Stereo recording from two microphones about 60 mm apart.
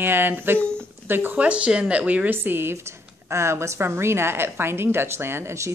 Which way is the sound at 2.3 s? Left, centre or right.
Right.